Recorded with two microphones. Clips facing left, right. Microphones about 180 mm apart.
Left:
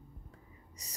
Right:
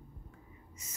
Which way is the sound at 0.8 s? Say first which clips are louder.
Even; 35° left (ahead or behind).